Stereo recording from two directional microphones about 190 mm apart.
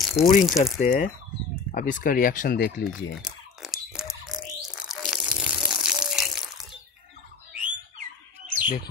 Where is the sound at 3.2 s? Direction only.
Centre (ahead or behind).